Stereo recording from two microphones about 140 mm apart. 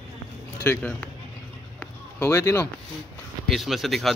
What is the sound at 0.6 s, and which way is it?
Speech, 10° left (ahead or behind).